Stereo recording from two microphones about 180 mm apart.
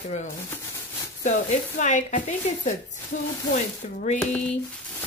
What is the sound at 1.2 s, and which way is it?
Speech, 40° left (ahead or behind).